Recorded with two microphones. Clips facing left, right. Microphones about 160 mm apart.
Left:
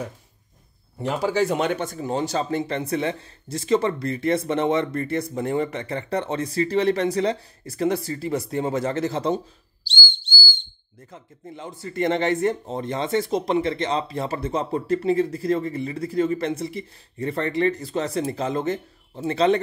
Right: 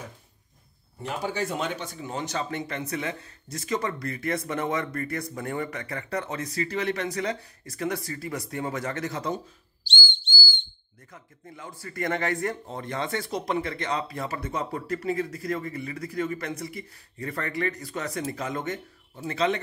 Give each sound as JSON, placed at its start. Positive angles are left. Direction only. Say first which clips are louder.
{"t": 1.0, "sound": "speech", "louder": "left 8 dB", "side_deg": 90}
{"t": 11.1, "sound": "speech", "louder": "left 6 dB", "side_deg": 25}